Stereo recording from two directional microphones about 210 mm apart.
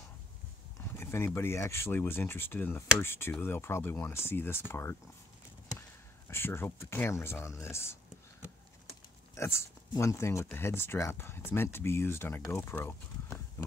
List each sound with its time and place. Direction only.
0.7 s speech: 10° left (ahead or behind)
9.3 s speech: 15° left (ahead or behind)